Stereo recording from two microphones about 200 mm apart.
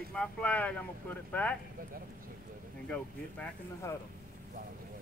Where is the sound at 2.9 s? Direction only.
5° left (ahead or behind).